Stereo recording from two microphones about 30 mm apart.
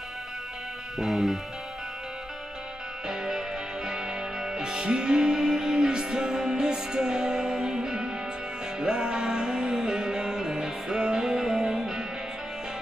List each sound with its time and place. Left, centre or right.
0.9 s music: centre
3.1 s music: right